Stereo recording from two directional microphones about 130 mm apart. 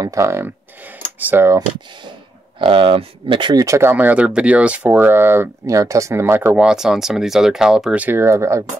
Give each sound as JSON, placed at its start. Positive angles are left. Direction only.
{"t": 0.0, "sound": "speech", "side_deg": -25}
{"t": 2.6, "sound": "speech", "side_deg": -45}
{"t": 3.6, "sound": "speech", "side_deg": -25}
{"t": 3.9, "sound": "speech", "side_deg": -10}